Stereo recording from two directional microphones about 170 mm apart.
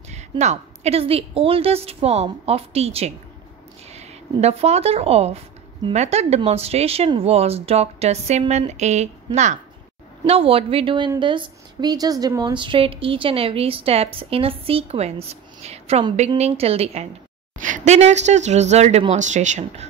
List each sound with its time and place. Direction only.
0.1 s a woman's voice: 40° right (ahead or behind)
17.6 s a woman's voice: 50° right (ahead or behind)